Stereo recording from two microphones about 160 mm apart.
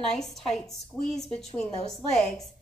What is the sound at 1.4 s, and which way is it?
Speech, 45° left (ahead or behind).